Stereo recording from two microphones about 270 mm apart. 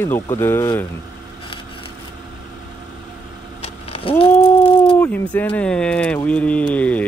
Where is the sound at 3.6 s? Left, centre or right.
Left.